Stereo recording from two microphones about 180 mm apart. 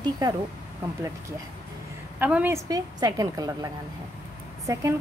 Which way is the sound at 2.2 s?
10° right (ahead or behind).